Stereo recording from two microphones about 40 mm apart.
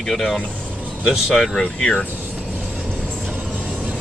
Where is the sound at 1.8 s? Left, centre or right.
Left.